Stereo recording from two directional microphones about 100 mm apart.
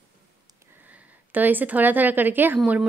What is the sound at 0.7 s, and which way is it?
A woman's voice, 15° right (ahead or behind).